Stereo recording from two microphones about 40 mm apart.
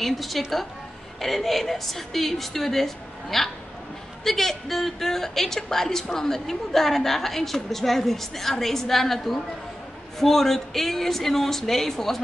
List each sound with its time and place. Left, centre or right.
0.0 s a woman's voice: centre